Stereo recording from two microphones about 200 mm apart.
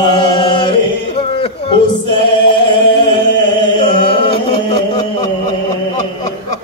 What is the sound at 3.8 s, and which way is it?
Chant, 25° left (ahead or behind).